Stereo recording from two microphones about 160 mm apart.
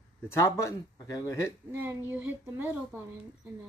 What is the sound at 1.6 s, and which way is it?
Speech, 15° right (ahead or behind).